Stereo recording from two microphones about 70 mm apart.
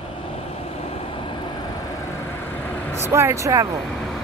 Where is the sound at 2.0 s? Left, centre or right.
Left.